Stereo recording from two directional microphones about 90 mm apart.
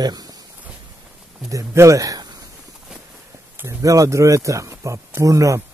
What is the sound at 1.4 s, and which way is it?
Speech, 35° right (ahead or behind).